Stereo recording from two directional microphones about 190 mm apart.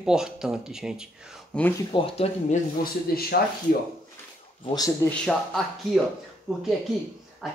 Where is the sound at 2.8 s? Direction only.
55° left (ahead or behind).